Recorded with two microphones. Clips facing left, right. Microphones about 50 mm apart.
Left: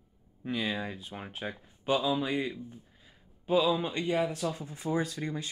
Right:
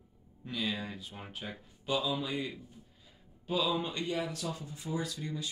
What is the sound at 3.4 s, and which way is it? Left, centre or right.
Speech, left.